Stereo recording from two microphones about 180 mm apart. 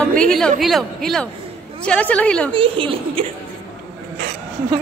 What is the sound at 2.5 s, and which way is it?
Speech, 30° right (ahead or behind).